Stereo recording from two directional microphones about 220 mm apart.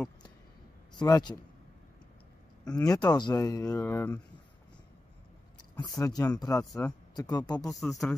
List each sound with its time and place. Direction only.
0.9 s speech: 15° left (ahead or behind)
2.7 s speech: 15° left (ahead or behind)
5.8 s speech: 15° left (ahead or behind)
7.6 s speech: centre (ahead or behind)